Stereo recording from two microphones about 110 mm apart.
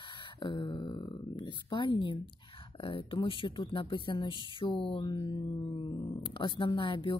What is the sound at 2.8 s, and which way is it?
A woman's voice, 50° left (ahead or behind).